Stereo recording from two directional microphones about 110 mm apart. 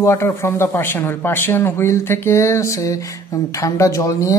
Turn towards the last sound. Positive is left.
turn(degrees=30)  # may be behind; listen again after turning